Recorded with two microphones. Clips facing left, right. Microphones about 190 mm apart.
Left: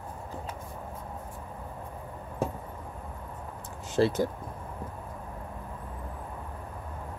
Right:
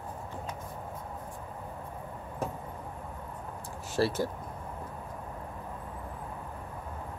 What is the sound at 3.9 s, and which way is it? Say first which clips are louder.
Speech: left 4 dB; 20° left (ahead or behind).